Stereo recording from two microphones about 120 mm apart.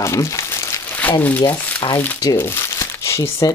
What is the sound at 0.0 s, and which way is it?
Crumpling, 25° left (ahead or behind).